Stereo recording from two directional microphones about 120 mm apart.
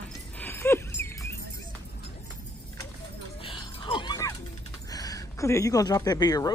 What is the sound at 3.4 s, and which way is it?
Music, 45° left (ahead or behind).